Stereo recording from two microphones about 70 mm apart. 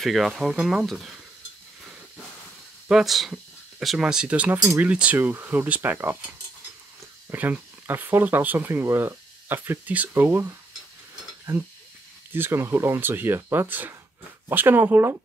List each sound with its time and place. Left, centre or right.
0.0 s speech: centre
2.9 s speech: centre; by 6.1 s right
7.8 s speech: right
8.6 s speech: right
11.5 s speech: right